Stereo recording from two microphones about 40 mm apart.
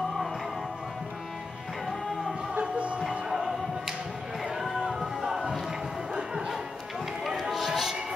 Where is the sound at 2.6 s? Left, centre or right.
Right.